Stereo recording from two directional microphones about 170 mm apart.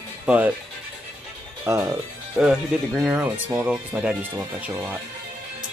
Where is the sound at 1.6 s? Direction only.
15° right (ahead or behind).